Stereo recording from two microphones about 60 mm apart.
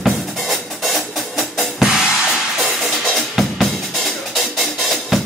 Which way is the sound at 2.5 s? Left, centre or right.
Centre.